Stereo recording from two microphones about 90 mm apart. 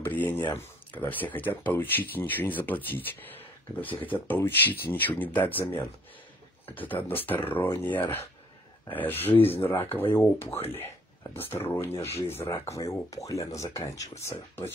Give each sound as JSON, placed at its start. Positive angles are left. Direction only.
{"t": 0.0, "sound": "speech", "side_deg": 20}
{"t": 4.1, "sound": "speech", "side_deg": 20}